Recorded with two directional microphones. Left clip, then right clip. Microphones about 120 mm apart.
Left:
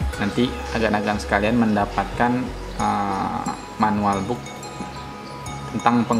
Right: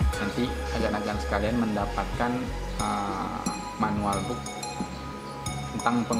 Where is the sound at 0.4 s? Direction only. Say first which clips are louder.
Left 9 dB; 20° left (ahead or behind).